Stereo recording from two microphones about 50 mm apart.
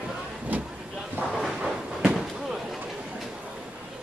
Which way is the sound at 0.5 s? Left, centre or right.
Right.